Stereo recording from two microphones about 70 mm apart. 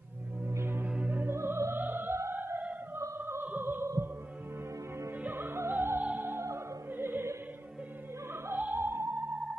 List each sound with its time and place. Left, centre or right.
0.5 s music: right
0.8 s music: centre
1.3 s opera: right
5.2 s music: right
5.7 s opera: right
8.5 s music: right